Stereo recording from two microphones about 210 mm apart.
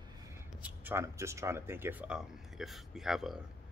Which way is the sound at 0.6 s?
10° right (ahead or behind).